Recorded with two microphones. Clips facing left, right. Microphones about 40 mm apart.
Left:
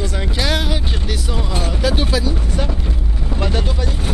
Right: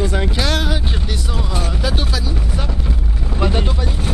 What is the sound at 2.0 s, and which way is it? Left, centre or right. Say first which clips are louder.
Speech: left 4 dB; centre.